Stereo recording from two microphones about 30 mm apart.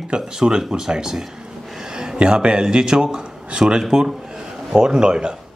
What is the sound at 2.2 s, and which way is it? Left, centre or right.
Speech, right.